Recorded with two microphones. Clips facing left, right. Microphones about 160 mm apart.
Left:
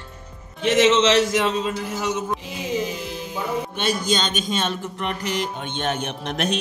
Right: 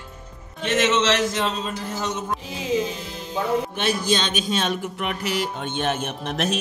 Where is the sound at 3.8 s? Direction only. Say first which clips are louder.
Even; centre (ahead or behind).